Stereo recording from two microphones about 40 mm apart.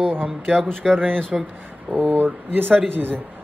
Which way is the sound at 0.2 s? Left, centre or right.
Centre.